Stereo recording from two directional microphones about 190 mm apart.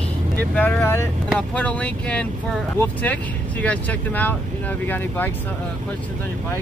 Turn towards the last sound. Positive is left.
turn(degrees=10)  # may be behind; listen again after turning